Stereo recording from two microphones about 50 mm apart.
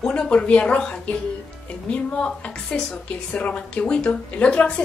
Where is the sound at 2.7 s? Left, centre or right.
Centre.